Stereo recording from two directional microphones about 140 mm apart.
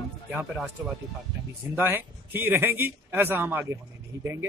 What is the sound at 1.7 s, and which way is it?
Speech, 15° right (ahead or behind).